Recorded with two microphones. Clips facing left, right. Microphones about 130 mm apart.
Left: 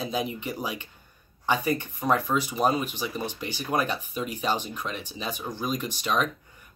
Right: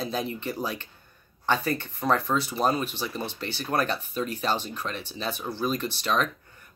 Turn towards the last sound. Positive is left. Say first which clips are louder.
# even
turn(degrees=10)  # may be behind; listen again after turning